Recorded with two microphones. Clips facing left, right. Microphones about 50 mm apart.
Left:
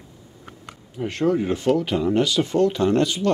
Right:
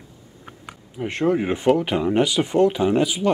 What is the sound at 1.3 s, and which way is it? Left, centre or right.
Speech, right.